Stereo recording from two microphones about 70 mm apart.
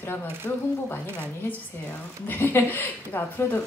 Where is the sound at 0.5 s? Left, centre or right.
Left.